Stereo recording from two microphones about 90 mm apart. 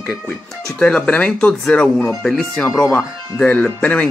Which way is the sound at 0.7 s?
10° left (ahead or behind).